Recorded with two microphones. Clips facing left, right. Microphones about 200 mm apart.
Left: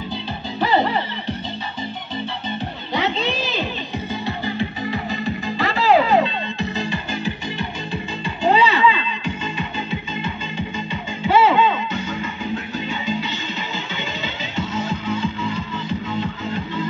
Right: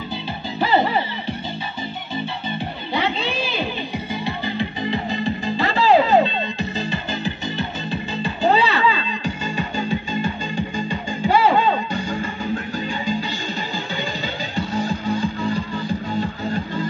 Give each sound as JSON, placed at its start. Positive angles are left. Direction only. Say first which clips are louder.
{"t": 2.9, "sound": "children playing", "louder": "left 1 dB", "side_deg": -10}
{"t": 4.9, "sound": "music", "louder": "right 1 dB", "side_deg": -30}
{"t": 10.9, "sound": "music", "louder": "left 1 dB", "side_deg": -45}
{"t": 14.6, "sound": "music", "louder": "right 1 dB", "side_deg": -35}
{"t": 16.1, "sound": "music", "louder": "right 1 dB", "side_deg": -45}